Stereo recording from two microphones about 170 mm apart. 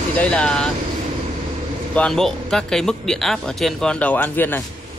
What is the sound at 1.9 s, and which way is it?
Speech, 5° left (ahead or behind).